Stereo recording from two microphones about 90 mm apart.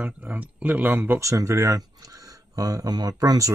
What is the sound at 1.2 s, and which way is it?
Speech, 35° right (ahead or behind).